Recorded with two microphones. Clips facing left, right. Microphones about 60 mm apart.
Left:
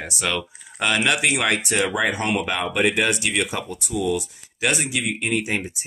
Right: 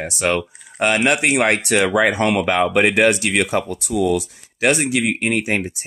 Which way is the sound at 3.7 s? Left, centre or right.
Right.